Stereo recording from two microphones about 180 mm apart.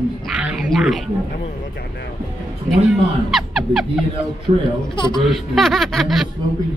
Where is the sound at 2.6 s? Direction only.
Centre (ahead or behind).